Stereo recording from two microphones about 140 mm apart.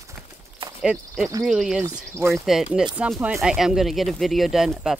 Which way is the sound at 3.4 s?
5° right (ahead or behind).